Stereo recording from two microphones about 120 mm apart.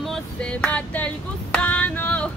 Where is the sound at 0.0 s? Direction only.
5° left (ahead or behind).